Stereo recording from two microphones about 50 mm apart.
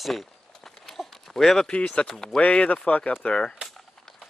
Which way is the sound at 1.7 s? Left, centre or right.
Left.